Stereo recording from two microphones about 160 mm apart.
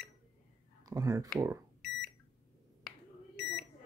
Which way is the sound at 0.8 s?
20° right (ahead or behind).